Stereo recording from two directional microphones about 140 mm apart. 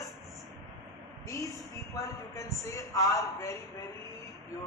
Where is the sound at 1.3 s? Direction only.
25° left (ahead or behind).